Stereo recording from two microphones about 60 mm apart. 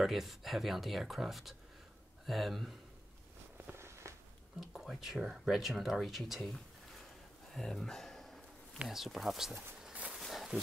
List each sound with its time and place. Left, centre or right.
0.0 s speech: centre
3.7 s walk: right
4.6 s speech: centre
7.5 s a sound: centre
8.8 s speech: centre
10.1 s a sound: centre